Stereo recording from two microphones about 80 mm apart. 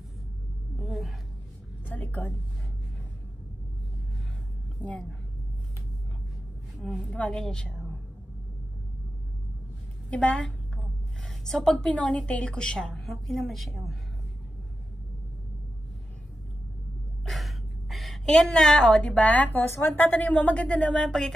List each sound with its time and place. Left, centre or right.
0.7 s a sound: centre
1.9 s a sound: left
4.7 s a woman's voice: centre
7.1 s a woman's voice: centre
10.0 s a woman's voice: centre
17.2 s a woman's voice: centre